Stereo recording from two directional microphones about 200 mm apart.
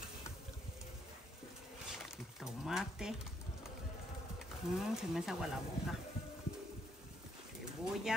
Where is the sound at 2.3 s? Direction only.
Centre (ahead or behind).